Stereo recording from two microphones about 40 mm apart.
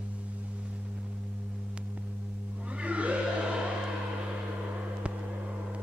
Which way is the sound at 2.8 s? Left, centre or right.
Right.